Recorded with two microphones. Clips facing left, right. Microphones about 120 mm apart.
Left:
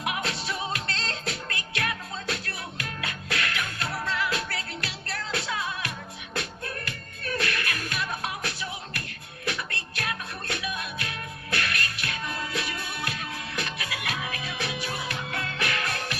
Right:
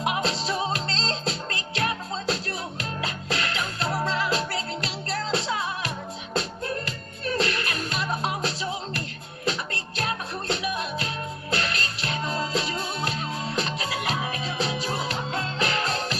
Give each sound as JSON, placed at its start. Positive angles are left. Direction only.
{"t": 0.0, "sound": "music", "side_deg": -25}